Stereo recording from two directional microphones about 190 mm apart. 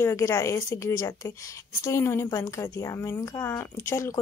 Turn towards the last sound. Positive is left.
turn(degrees=15)  # may be behind; listen again after turning